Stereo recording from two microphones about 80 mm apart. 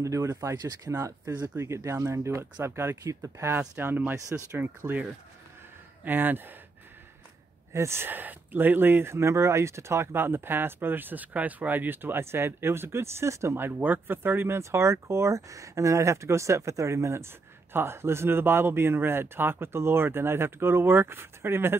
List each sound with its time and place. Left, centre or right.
0.0 s speech: right
0.6 s speech: right
0.9 s speech: right
6.0 s speech: right
7.7 s speech: right
13.7 s speech: right